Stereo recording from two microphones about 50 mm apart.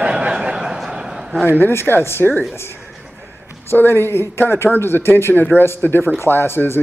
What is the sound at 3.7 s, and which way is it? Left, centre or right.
Speech, left.